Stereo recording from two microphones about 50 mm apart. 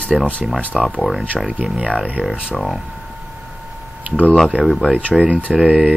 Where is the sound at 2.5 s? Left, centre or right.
Centre.